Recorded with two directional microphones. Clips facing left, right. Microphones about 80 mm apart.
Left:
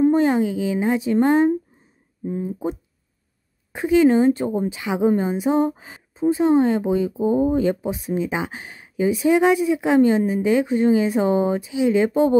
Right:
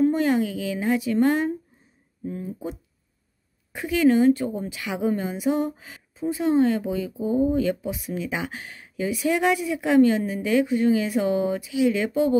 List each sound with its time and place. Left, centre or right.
0.0 s a woman's voice: left
3.7 s a woman's voice: left